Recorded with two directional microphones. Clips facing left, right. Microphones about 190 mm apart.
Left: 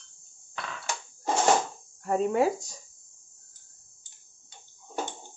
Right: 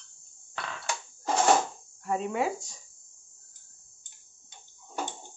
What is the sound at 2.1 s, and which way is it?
Speech, 40° left (ahead or behind).